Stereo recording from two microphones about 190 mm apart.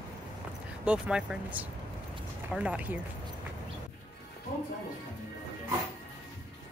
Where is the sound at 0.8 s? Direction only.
5° right (ahead or behind).